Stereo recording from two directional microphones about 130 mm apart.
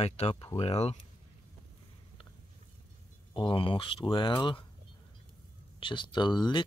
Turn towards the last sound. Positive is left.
turn(degrees=35)  # may be behind; listen again after turning